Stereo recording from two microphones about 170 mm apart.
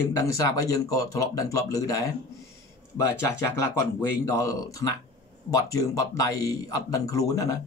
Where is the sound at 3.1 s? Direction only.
15° left (ahead or behind).